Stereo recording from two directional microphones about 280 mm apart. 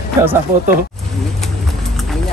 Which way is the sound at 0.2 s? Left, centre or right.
Centre.